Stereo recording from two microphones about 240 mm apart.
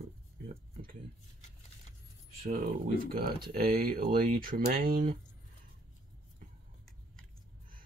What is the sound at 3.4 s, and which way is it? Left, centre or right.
Speech, right.